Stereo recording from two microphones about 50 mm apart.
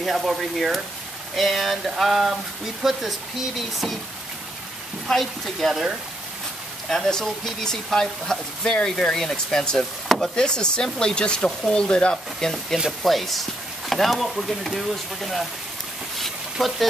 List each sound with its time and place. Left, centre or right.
0.0 s speech: centre
5.0 s speech: centre
6.9 s speech: centre
13.0 s speech: centre
16.2 s a sound: centre